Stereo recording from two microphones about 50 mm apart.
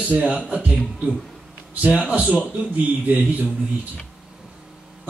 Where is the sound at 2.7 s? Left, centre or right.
Right.